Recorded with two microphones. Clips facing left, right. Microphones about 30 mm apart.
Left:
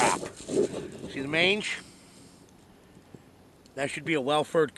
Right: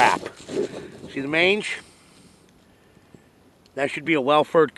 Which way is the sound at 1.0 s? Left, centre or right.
Centre.